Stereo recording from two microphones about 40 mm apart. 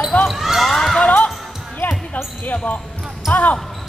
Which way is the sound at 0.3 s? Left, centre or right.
Centre.